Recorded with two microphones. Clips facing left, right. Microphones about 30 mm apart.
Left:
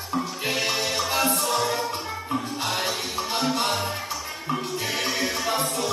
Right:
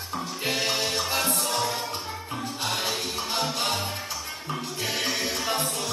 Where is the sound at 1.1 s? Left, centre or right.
Left.